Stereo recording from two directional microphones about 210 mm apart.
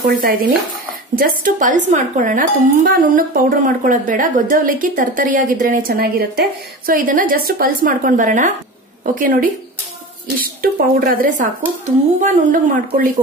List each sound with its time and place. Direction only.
0.0 s speech: 45° right (ahead or behind)